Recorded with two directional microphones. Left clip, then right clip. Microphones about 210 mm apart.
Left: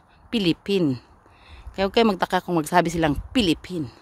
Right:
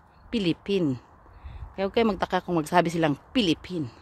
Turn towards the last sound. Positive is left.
turn(degrees=10)  # may be behind; listen again after turning